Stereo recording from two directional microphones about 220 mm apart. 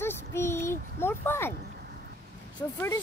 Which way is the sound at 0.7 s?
10° left (ahead or behind).